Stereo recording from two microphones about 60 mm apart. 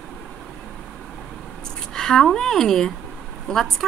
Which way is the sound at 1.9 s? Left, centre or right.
Centre.